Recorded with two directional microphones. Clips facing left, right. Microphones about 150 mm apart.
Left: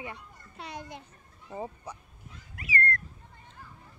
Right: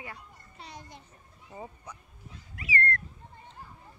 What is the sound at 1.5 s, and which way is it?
Speech, 30° left (ahead or behind).